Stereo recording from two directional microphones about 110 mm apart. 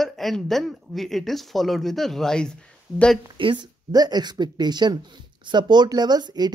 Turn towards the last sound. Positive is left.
turn(degrees=-40)  # may be behind; listen again after turning